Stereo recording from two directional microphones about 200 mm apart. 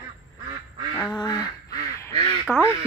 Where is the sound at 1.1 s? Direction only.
20° left (ahead or behind).